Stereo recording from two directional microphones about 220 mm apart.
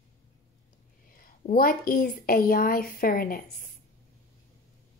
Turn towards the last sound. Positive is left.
turn(degrees=40)  # may be behind; listen again after turning